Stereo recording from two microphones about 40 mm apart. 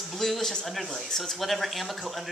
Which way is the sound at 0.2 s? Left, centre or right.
Centre.